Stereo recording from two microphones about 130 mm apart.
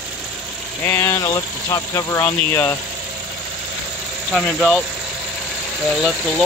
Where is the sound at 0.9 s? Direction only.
20° left (ahead or behind).